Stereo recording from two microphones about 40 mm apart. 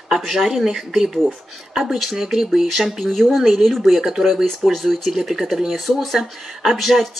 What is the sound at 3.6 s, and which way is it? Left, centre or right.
Speech, centre.